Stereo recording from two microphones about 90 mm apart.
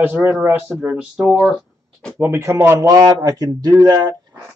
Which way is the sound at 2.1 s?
25° right (ahead or behind).